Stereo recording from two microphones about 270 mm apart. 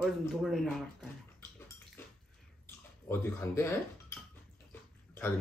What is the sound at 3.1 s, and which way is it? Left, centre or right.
Speech, centre.